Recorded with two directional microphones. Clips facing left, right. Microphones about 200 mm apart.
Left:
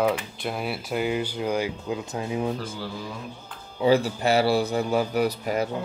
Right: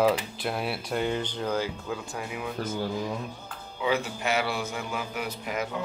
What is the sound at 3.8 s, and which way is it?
A man's voice, 35° left (ahead or behind).